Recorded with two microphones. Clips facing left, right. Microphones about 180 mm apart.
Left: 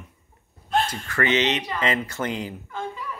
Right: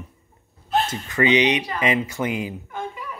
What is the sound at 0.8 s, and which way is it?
Speech, 20° right (ahead or behind).